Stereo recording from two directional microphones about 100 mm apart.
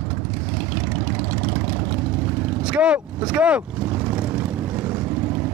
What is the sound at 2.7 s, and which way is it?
Speech, 15° right (ahead or behind).